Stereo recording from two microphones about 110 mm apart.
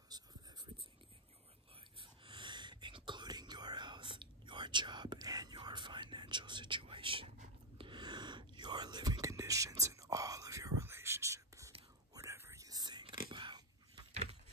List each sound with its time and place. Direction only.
0.1 s writing: 40° right (ahead or behind)
2.0 s whispering: 50° right (ahead or behind)